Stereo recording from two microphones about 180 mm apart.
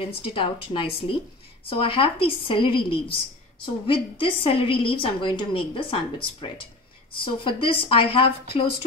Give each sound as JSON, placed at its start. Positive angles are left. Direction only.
{"t": 0.3, "sound": "a woman's voice", "side_deg": 30}